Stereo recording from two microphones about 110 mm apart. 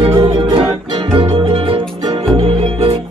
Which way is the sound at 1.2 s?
55° right (ahead or behind).